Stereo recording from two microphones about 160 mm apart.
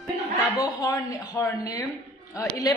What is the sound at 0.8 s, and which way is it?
A woman's voice, 25° left (ahead or behind).